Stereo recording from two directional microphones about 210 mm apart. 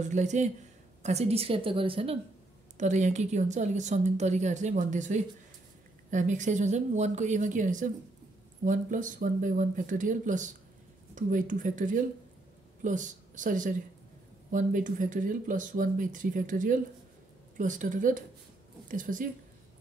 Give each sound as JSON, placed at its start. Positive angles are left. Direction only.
{"t": 0.0, "sound": "speech", "side_deg": -35}